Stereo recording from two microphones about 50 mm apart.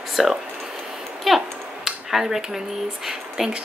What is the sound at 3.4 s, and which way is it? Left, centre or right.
Speech, centre.